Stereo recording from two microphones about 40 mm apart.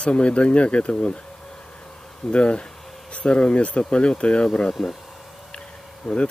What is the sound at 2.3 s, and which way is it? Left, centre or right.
Speech, left.